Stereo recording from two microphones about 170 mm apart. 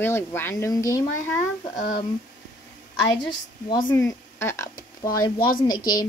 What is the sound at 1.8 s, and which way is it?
Speech, 50° left (ahead or behind).